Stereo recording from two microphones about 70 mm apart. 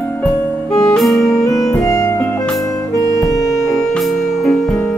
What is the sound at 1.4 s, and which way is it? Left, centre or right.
Music, left.